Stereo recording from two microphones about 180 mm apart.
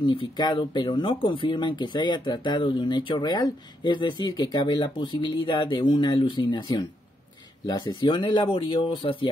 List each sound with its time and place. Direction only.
0.0 s speech: 25° left (ahead or behind)